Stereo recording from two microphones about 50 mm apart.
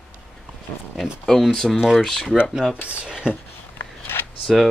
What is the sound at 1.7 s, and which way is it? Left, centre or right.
Speech, centre.